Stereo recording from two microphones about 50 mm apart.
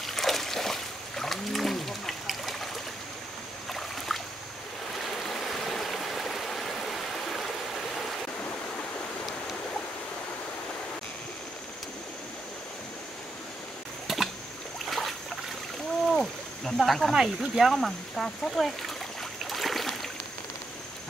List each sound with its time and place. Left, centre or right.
0.0 s a sound: centre
4.1 s boat: centre
5.0 s stream: centre
14.0 s a sound: centre
14.9 s boat: centre
16.1 s a sound: centre
17.1 s speech: centre
17.7 s speech: centre
19.5 s boat: centre